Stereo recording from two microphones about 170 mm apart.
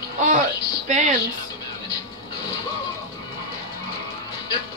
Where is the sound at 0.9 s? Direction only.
45° right (ahead or behind).